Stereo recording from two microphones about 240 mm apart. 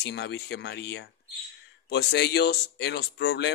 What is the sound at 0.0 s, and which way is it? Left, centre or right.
Speech, left.